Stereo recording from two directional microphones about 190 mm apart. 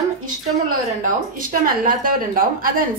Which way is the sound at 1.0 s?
45° right (ahead or behind).